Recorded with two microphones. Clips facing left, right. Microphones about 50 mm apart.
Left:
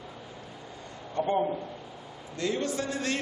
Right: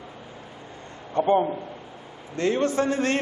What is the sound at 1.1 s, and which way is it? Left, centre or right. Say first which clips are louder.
A man's voice: right 6 dB; right.